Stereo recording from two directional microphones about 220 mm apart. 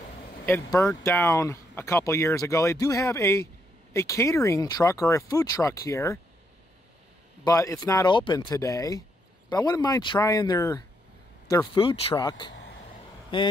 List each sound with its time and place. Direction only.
0.5 s speech: 10° left (ahead or behind)
7.4 s speech: 15° left (ahead or behind)